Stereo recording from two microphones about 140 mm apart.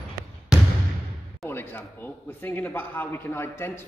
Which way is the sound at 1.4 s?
15° left (ahead or behind).